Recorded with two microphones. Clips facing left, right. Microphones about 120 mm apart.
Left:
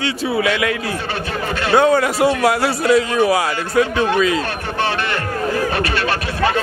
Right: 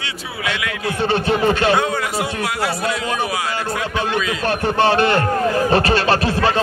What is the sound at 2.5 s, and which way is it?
Speech, 40° left (ahead or behind).